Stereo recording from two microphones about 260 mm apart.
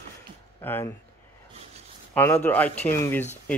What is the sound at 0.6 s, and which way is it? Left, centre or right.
Speech, centre.